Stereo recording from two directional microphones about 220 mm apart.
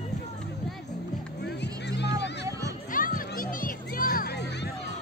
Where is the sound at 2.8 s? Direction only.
40° left (ahead or behind).